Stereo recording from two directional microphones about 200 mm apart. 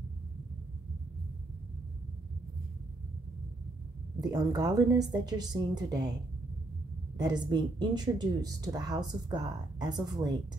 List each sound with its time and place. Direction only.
4.2 s speech: 20° right (ahead or behind)
7.2 s speech: 20° right (ahead or behind)